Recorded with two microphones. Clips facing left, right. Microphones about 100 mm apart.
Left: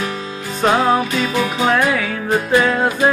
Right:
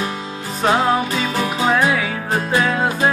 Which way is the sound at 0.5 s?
Centre (ahead or behind).